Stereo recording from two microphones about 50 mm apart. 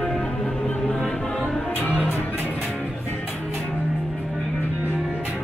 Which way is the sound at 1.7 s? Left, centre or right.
Left.